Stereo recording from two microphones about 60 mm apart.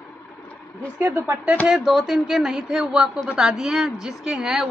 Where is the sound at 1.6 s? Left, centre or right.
Centre.